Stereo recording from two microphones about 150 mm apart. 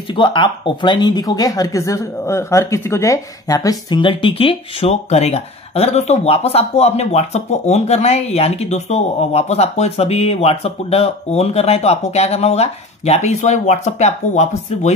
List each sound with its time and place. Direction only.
0.1 s speech: 30° left (ahead or behind); by 15.0 s 50° left (ahead or behind)